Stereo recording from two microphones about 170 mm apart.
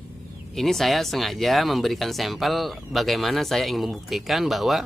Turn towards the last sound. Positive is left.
turn(degrees=0)  # may be behind; listen again after turning